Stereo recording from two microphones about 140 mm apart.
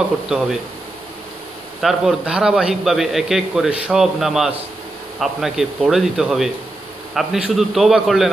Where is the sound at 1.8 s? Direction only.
Centre (ahead or behind).